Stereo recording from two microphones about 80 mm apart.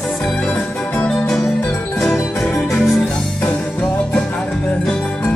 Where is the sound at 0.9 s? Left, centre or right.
Centre.